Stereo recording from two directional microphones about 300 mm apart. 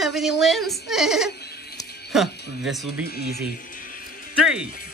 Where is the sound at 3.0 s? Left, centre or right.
Left.